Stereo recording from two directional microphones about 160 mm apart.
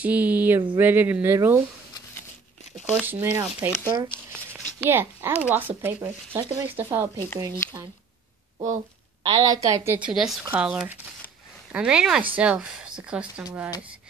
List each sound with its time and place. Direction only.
0.0 s speech: 10° right (ahead or behind)
2.7 s speech: centre (ahead or behind)
3.1 s speech: 15° right (ahead or behind)
3.8 s a woman's voice: 25° right (ahead or behind)
4.8 s speech: 15° right (ahead or behind)
7.3 s a woman's voice: 25° right (ahead or behind)
9.2 s a woman's voice: 25° right (ahead or behind)
10.0 s speech: 5° right (ahead or behind)